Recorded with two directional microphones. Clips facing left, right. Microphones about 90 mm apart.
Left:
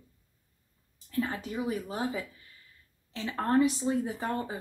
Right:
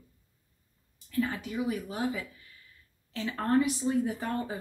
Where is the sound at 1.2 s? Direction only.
30° left (ahead or behind).